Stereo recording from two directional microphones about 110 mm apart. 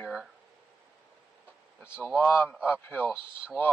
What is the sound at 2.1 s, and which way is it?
Speech, 15° left (ahead or behind).